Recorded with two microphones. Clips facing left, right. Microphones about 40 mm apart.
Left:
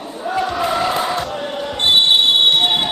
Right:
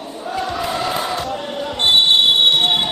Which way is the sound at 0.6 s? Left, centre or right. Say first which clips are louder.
Left 3 dB; centre.